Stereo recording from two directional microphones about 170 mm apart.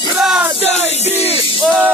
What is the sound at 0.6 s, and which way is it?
Music, 40° left (ahead or behind).